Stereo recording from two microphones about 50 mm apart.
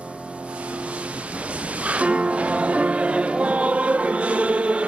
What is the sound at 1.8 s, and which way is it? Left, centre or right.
Music, right.